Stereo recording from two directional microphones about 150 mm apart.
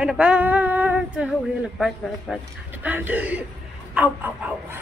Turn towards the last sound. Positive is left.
turn(degrees=-10)  # may be behind; listen again after turning